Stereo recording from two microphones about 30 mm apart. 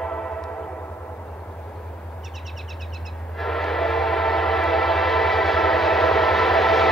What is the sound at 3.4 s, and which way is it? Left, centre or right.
Train, centre.